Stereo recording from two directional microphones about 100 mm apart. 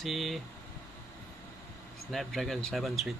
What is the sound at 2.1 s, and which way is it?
Speech, centre (ahead or behind).